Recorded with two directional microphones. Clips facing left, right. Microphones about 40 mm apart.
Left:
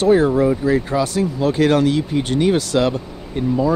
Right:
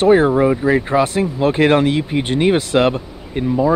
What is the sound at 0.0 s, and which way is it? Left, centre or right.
Speech, right.